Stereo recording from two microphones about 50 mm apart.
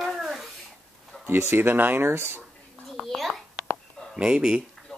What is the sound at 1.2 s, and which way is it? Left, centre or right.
Speech, right.